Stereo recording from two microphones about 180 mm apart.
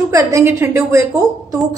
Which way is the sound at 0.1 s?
15° right (ahead or behind).